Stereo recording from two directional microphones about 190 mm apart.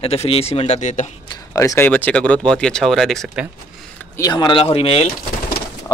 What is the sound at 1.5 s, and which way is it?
Speech, 15° left (ahead or behind).